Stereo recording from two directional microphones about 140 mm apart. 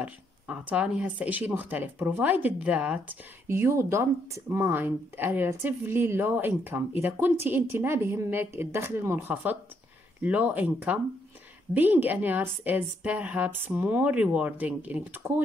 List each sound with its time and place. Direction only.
0.0 s speech: 10° right (ahead or behind)